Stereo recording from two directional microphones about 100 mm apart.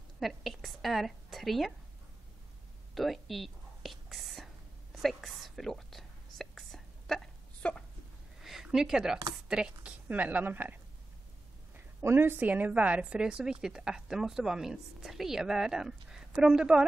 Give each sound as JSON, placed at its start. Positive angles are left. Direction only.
{"t": 0.2, "sound": "a woman's voice", "side_deg": 0}
{"t": 2.9, "sound": "whispering", "side_deg": 0}
{"t": 8.4, "sound": "a sound", "side_deg": -5}
{"t": 9.5, "sound": "a woman's voice", "side_deg": -10}